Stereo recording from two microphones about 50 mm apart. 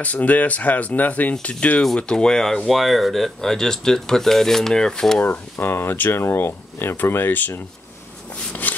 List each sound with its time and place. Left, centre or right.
0.0 s speech: left
2.1 s speech: centre
5.2 s speech: left
8.6 s wood: left